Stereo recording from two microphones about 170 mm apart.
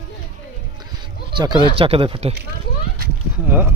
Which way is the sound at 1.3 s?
25° right (ahead or behind).